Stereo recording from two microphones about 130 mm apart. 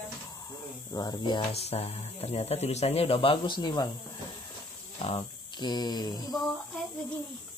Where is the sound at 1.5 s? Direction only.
50° left (ahead or behind); by 3.9 s 35° left (ahead or behind).